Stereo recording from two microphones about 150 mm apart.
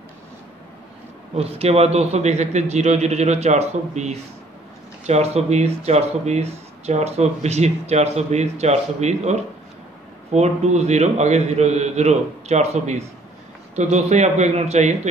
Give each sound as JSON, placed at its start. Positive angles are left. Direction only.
{"t": 1.3, "sound": "speech", "side_deg": -45}